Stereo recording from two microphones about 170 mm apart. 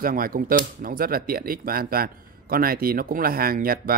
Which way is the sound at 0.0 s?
55° right (ahead or behind).